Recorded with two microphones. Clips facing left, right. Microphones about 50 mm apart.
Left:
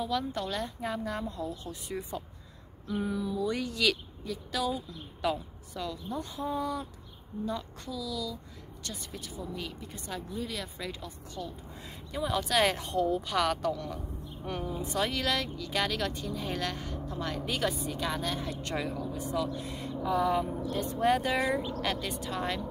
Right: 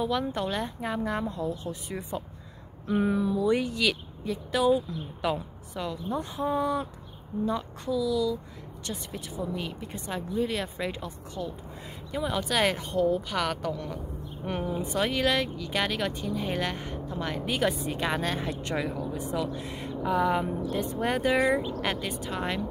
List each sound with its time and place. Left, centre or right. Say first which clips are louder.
0.0 s speech: right 4 dB; right
1.7 s speech: right 2 dB; centre
2.9 s speech: right 7 dB; right
3.3 s speech: right 6 dB; right
4.2 s speech: right 6 dB; right
9.4 s speech: right 6 dB; right
11.4 s speech: right 4 dB; centre
14.4 s speech: right 4 dB; right
17.7 s speech: right 4 dB; right
18.6 s speech: right 3 dB; centre; by 20.4 s right
21.0 s speech: right 2 dB; centre